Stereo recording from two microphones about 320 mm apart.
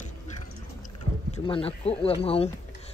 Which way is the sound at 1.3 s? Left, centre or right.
Centre.